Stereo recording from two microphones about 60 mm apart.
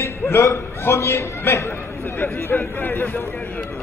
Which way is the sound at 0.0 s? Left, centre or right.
Left.